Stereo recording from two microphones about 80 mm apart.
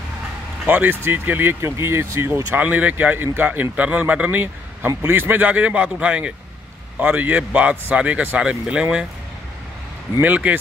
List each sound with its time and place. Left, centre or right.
0.7 s speech: right
10.2 s speech: right